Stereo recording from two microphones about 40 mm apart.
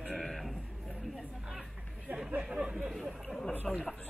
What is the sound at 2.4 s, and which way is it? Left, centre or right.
Speech, right.